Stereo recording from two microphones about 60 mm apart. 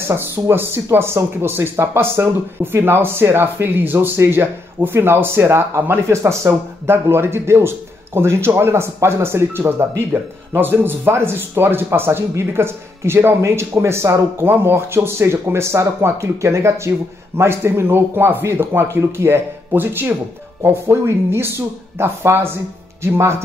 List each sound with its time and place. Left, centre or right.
0.1 s speech: right